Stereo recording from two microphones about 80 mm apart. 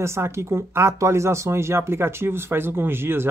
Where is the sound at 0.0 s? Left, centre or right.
Right.